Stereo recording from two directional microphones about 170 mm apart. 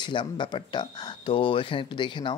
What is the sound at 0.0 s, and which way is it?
Speech, 30° left (ahead or behind).